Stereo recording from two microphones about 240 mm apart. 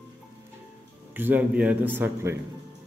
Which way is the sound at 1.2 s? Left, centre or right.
Centre.